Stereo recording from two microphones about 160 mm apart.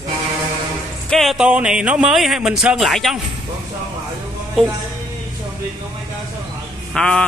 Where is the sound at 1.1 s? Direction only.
Centre (ahead or behind).